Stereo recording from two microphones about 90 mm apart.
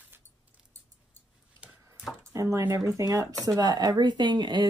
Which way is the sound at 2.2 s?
35° right (ahead or behind).